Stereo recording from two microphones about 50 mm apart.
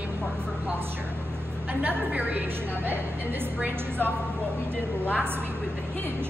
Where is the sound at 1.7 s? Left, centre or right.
Right.